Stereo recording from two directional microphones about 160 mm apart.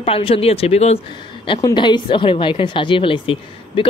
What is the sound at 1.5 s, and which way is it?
Speech, 25° left (ahead or behind).